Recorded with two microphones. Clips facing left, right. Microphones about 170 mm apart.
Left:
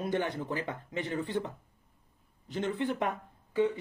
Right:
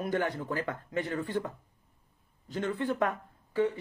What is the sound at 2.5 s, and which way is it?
Speech, 20° left (ahead or behind).